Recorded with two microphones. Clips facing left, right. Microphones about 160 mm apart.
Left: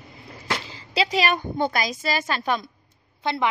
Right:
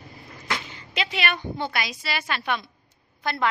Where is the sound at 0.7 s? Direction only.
30° left (ahead or behind).